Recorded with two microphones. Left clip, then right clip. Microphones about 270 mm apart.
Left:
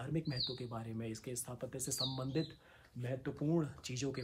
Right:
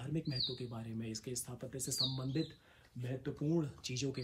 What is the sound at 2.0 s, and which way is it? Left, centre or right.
Speech, left.